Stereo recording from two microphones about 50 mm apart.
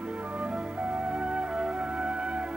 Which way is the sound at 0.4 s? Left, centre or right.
Right.